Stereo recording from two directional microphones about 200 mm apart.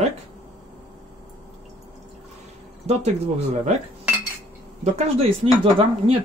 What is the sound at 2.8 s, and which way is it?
Speech, 35° right (ahead or behind).